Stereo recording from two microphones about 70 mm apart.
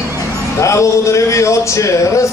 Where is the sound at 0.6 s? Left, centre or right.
Left.